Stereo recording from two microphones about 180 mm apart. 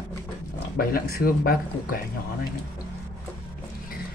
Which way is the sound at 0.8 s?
55° left (ahead or behind).